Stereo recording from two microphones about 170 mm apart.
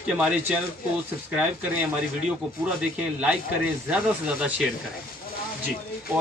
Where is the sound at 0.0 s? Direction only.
10° right (ahead or behind).